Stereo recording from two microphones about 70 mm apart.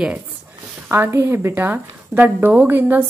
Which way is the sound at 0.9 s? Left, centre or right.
Right.